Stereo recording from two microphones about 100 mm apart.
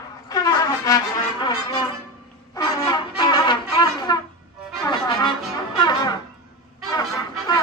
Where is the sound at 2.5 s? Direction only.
40° left (ahead or behind).